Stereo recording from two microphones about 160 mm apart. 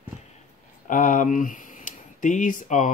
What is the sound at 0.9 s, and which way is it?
Speech, 55° left (ahead or behind).